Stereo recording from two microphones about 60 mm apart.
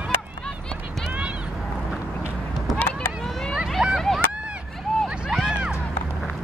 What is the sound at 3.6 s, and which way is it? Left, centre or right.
Vehicle, centre.